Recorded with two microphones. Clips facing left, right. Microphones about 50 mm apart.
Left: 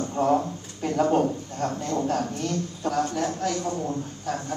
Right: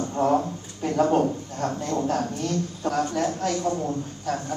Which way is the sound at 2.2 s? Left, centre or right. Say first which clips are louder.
Right 1 dB; left.